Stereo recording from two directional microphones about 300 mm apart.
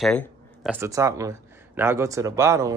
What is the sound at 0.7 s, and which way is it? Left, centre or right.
Speech, centre.